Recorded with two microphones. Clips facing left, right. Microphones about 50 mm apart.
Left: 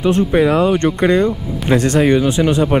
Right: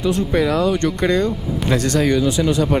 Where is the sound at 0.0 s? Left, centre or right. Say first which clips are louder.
Left 5 dB; left.